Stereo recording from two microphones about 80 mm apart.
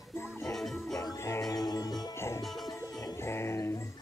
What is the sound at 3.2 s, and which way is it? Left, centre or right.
Music, left.